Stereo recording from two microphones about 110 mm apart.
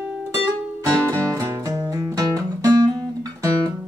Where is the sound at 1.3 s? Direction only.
30° right (ahead or behind).